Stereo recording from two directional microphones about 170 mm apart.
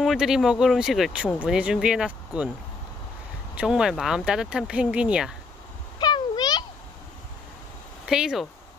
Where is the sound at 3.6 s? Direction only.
5° right (ahead or behind).